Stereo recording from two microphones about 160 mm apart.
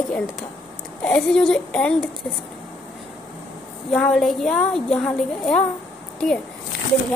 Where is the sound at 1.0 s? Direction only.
5° left (ahead or behind).